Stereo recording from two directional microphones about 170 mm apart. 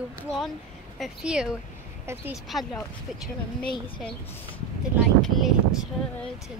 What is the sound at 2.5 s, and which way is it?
Speech, centre (ahead or behind).